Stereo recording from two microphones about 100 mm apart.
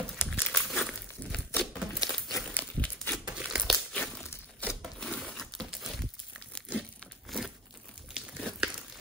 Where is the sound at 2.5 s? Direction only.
15° left (ahead or behind).